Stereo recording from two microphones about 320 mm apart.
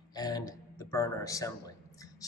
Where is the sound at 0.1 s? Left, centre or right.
Centre.